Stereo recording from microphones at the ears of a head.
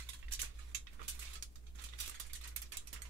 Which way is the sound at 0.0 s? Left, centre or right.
Right.